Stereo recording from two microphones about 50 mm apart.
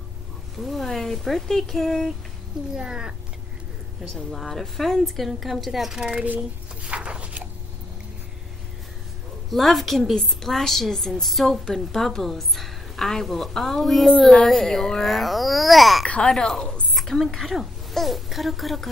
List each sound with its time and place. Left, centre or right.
0.6 s a woman's voice: centre
2.7 s speech: centre
4.3 s a woman's voice: centre
6.1 s speech: right
6.8 s a sound: right
9.5 s a woman's voice: centre
16.2 s a woman's voice: centre